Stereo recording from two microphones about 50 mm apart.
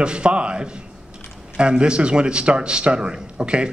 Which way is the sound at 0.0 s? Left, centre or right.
Centre.